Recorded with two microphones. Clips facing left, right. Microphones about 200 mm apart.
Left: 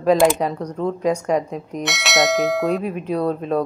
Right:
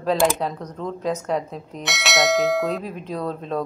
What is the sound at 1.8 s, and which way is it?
Speech, centre (ahead or behind).